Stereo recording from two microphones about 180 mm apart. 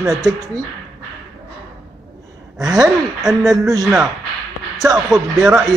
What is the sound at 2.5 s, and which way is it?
Gasp, centre (ahead or behind).